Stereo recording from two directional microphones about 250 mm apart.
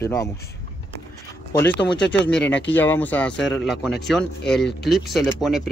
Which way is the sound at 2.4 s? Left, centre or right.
Left.